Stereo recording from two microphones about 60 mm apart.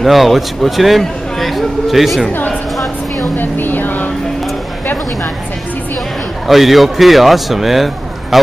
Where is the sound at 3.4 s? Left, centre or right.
Left.